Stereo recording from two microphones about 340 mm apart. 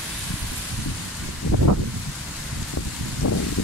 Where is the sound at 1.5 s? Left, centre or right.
Left.